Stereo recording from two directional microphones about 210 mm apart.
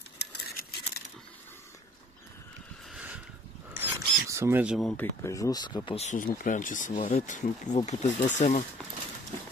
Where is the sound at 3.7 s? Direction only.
15° right (ahead or behind); by 5.0 s centre (ahead or behind).